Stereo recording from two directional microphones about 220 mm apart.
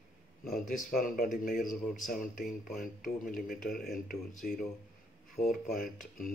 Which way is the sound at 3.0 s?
40° left (ahead or behind).